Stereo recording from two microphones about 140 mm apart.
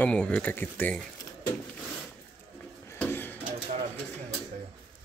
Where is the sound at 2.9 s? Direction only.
15° left (ahead or behind).